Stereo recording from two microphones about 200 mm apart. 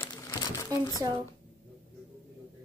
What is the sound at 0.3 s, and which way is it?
Crumpling, 20° left (ahead or behind).